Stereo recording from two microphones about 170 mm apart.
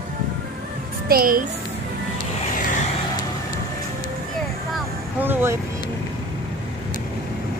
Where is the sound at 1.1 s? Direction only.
60° right (ahead or behind).